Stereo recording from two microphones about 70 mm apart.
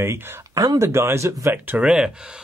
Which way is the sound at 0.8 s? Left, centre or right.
Right.